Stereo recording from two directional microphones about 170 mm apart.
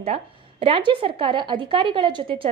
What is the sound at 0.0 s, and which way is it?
A woman's voice, 35° right (ahead or behind).